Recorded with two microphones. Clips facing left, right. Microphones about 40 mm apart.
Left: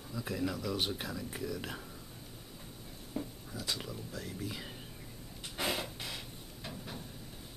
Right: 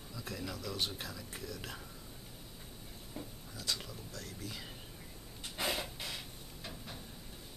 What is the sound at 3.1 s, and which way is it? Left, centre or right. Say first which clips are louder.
Speech: left 7 dB; centre.